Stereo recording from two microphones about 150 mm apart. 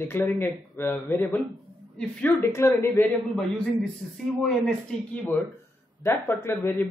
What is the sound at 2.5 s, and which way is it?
Speech, 15° left (ahead or behind).